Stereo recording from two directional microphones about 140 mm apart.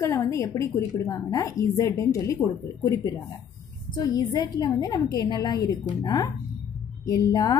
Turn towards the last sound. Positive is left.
turn(degrees=25)  # may be behind; listen again after turning